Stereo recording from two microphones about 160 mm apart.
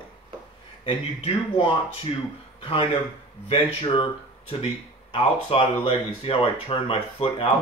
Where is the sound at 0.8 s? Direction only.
35° left (ahead or behind).